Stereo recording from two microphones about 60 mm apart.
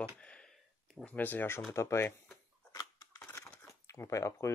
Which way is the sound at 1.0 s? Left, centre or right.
Left.